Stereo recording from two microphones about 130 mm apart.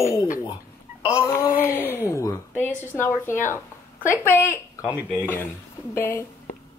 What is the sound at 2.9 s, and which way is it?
Speech, 15° left (ahead or behind).